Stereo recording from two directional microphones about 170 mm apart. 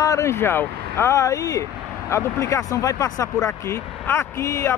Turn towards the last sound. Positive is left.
turn(degrees=15)  # may be behind; listen again after turning